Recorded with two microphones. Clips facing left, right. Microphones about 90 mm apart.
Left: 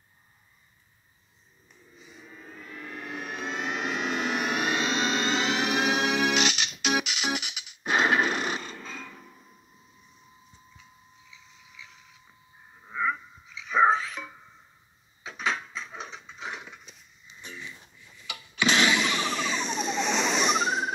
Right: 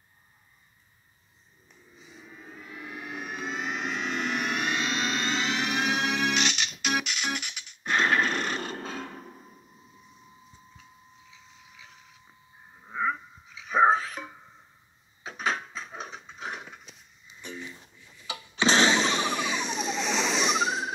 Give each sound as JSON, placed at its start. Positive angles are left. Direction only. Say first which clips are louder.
{"t": 2.2, "sound": "civil defense siren", "louder": "even", "side_deg": -10}
{"t": 8.5, "sound": "music", "louder": "right 4 dB", "side_deg": -60}
{"t": 11.2, "sound": "mechanisms", "louder": "right 1 dB", "side_deg": -45}
{"t": 12.9, "sound": "dog", "louder": "even", "side_deg": -45}
{"t": 15.2, "sound": "a sound", "louder": "even", "side_deg": -45}
{"t": 18.2, "sound": "blender", "louder": "right 1 dB", "side_deg": -30}